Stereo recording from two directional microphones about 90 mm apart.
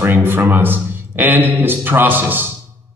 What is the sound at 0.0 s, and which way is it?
Speech, 25° right (ahead or behind).